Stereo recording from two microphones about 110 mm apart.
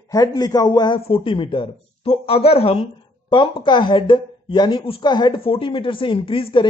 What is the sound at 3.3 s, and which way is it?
Speech, 45° left (ahead or behind).